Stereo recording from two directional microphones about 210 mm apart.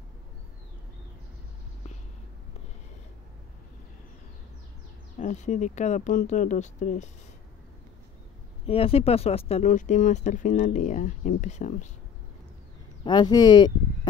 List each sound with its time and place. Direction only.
5.2 s speech: 35° left (ahead or behind)
8.6 s speech: 25° left (ahead or behind)
13.0 s speech: 20° left (ahead or behind)